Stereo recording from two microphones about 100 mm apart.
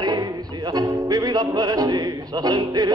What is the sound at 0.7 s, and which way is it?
Speech, 40° right (ahead or behind).